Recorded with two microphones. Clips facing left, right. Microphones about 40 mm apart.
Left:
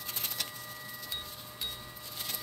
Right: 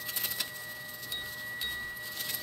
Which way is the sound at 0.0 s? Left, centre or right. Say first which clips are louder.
Right 2 dB; centre.